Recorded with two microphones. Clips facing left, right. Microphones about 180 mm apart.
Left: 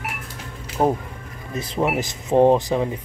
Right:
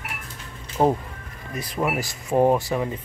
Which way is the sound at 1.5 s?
25° left (ahead or behind).